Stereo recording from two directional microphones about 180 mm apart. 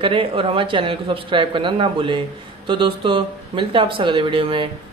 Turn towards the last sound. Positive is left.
turn(degrees=-30)  # may be behind; listen again after turning